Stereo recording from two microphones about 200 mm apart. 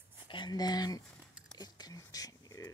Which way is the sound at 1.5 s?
20° left (ahead or behind).